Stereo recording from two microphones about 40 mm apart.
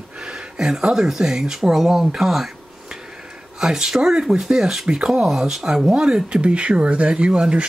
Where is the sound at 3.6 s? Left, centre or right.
Centre.